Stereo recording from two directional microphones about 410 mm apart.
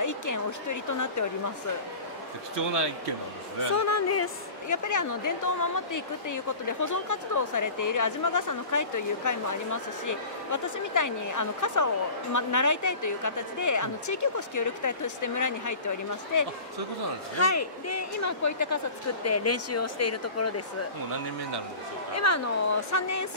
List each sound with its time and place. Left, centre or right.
0.0 s a woman's voice: left
2.5 s speech: right
3.7 s a woman's voice: left
22.1 s speech: left